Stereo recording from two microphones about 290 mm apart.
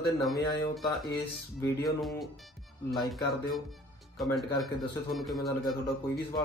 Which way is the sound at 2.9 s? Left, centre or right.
Centre.